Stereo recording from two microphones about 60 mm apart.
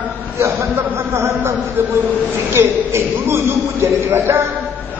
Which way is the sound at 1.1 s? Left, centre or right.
Right.